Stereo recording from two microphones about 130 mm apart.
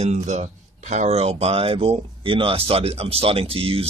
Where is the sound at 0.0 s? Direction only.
60° right (ahead or behind).